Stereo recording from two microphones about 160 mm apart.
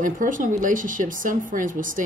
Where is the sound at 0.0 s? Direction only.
55° right (ahead or behind).